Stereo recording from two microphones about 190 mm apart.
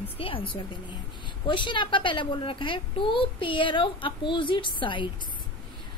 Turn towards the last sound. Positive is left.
turn(degrees=25)  # may be behind; listen again after turning